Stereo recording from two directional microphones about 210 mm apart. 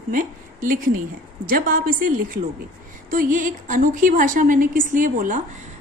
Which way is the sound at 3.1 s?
40° right (ahead or behind).